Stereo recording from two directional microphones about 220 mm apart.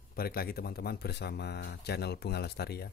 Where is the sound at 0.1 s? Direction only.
45° left (ahead or behind).